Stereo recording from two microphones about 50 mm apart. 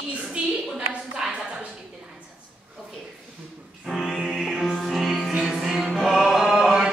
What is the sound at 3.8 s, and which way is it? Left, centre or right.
Music, centre.